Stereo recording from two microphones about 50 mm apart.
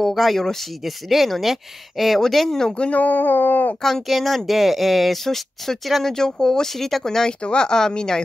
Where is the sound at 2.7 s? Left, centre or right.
Left.